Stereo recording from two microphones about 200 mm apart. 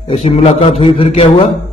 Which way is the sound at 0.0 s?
30° left (ahead or behind).